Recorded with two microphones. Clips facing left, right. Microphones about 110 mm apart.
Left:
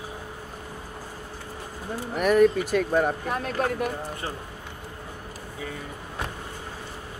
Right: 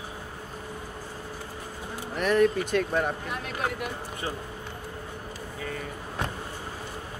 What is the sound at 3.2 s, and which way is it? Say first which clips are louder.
Speech: left 5 dB; 40° left (ahead or behind).